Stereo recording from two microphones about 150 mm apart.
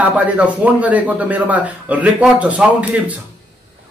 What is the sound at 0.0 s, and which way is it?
A man's voice, 10° right (ahead or behind).